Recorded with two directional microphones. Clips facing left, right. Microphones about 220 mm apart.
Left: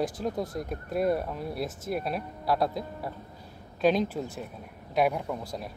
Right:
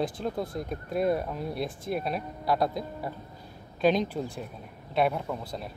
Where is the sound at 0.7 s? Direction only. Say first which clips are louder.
Even; centre (ahead or behind).